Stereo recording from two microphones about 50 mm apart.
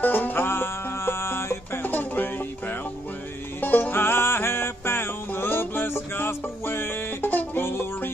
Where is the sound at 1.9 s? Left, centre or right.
Left.